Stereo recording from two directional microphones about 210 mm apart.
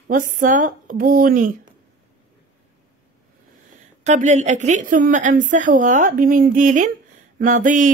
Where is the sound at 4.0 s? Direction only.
35° right (ahead or behind).